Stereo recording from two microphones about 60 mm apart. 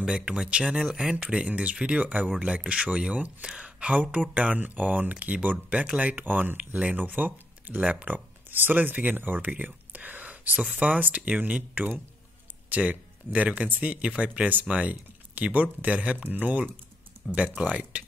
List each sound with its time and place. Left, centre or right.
0.0 s speech: centre